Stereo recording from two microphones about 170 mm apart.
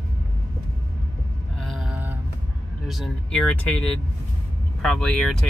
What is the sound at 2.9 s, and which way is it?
Speech, centre (ahead or behind).